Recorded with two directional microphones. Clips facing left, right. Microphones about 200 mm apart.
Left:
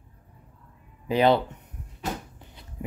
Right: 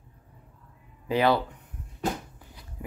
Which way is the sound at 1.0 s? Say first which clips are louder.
Left 3 dB; 20° left (ahead or behind).